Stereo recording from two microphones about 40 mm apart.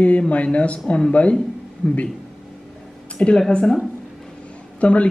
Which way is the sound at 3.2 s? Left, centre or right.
Centre.